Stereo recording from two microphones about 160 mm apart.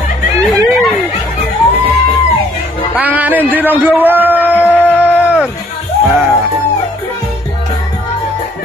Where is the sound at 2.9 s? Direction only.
10° right (ahead or behind).